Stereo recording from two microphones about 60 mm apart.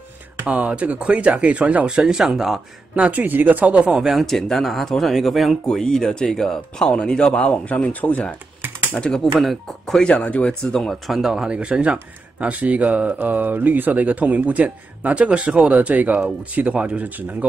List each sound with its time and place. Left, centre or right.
0.5 s speech: right
3.0 s speech: right
4.0 s speech: centre; by 8.2 s left
8.9 s speech: centre
9.4 s speech: centre
10.0 s speech: left
10.6 s speech: centre; by 17.5 s right